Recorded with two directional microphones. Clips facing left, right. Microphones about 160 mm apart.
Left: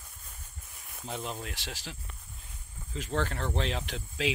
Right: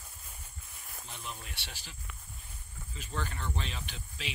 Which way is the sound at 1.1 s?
90° left.